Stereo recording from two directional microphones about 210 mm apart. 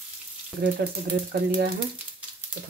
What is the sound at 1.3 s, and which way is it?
Speech, 45° right (ahead or behind).